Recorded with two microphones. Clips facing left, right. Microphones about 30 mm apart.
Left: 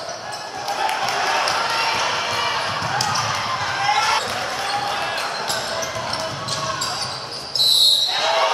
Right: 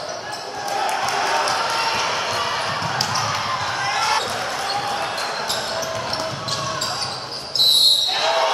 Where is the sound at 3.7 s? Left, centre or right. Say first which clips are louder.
Left 3 dB; left.